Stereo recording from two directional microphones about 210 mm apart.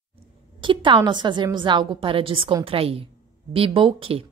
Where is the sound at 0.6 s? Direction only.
25° right (ahead or behind).